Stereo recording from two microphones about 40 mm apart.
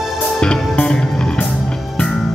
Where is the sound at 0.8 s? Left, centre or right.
Left.